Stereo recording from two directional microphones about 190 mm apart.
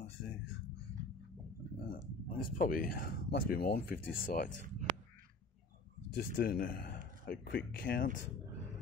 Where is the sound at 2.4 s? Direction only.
50° left (ahead or behind).